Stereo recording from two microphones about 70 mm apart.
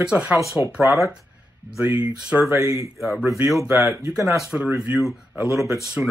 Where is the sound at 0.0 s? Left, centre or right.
Centre.